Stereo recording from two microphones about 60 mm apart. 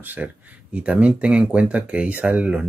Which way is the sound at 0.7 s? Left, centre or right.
Right.